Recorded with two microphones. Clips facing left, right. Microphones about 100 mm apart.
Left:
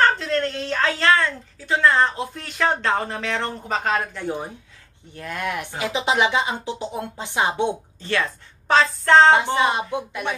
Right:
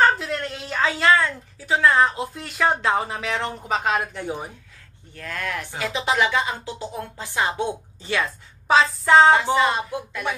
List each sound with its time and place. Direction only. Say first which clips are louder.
0.0 s a woman's voice: left 1 dB; 5° right (ahead or behind)
5.1 s speech: left 2 dB; 20° left (ahead or behind)
8.0 s a woman's voice: even; 5° right (ahead or behind)
9.6 s speech: even; 20° left (ahead or behind)